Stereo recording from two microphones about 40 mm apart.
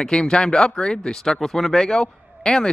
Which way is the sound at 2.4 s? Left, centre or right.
Left.